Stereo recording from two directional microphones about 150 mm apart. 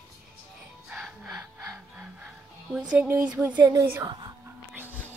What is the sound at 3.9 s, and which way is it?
Speech, 25° right (ahead or behind).